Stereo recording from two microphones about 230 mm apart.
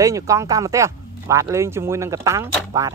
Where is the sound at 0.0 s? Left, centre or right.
Centre.